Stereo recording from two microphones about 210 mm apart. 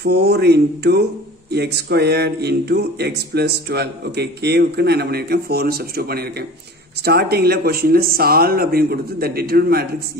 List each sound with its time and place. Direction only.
0.0 s speech: 50° right (ahead or behind)